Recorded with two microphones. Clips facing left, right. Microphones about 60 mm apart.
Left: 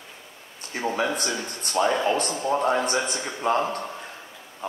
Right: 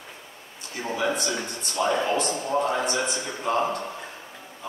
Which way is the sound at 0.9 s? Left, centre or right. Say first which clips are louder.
Right 3 dB; left.